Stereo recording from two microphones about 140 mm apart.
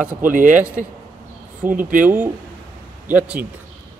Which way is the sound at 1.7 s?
70° right (ahead or behind).